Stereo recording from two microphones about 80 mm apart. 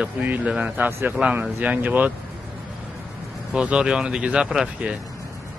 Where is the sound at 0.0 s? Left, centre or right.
Centre.